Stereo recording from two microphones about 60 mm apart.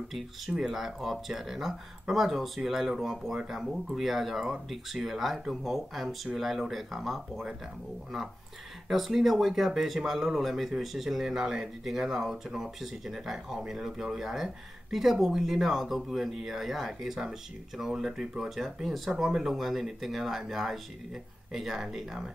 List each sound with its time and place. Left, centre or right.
0.6 s speech: centre
8.8 s speech: centre